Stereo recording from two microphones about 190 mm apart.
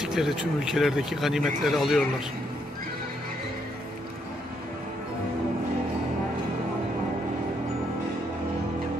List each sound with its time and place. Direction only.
0.0 s speech: centre (ahead or behind)